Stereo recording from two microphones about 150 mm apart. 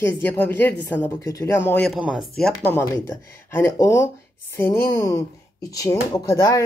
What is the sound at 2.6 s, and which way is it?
Speech, 15° left (ahead or behind).